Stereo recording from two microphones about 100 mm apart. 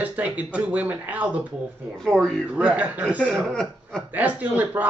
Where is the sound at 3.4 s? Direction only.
5° left (ahead or behind).